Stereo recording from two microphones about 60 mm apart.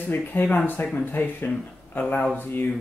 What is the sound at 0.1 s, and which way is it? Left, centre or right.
Speech, left.